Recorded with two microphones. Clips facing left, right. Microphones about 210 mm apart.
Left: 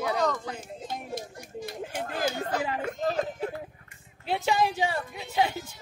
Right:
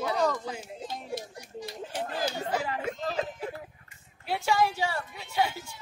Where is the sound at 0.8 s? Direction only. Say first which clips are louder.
Left 1 dB; 50° left (ahead or behind).